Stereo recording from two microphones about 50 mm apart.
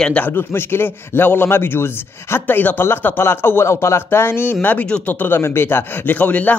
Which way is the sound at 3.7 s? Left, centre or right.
Left.